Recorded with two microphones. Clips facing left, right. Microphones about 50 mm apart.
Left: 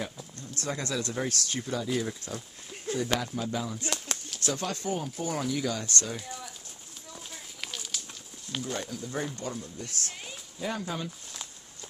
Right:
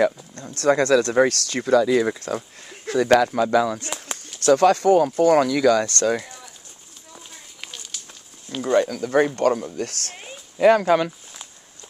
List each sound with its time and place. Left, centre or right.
0.4 s speech: right
3.9 s a sound: centre
4.5 s speech: right
7.1 s a sound: centre
8.6 s speech: right
10.6 s speech: right